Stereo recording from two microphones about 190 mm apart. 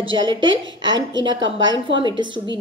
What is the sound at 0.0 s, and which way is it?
A woman's voice, 25° right (ahead or behind).